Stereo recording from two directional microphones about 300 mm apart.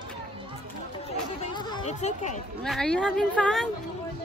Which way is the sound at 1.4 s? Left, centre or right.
Centre.